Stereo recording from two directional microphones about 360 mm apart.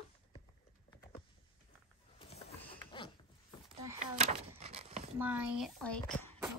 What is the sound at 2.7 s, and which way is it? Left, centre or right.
Zipper, centre.